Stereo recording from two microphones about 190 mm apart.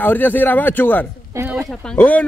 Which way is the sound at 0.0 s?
10° left (ahead or behind).